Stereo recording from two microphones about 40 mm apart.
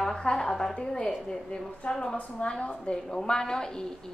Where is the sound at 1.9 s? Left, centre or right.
Centre.